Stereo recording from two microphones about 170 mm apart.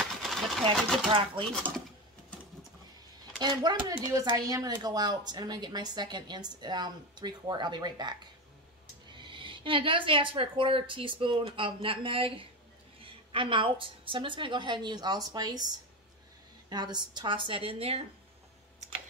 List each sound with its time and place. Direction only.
0.0 s a sound: centre (ahead or behind)
1.4 s speech: 5° left (ahead or behind)
3.3 s speech: 25° right (ahead or behind)
9.2 s a woman's voice: 30° right (ahead or behind)